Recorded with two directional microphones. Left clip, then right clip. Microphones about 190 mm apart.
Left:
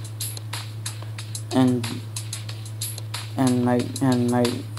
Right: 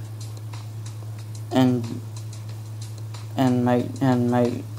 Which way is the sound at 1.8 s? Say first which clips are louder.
Left 4 dB; 45° left (ahead or behind).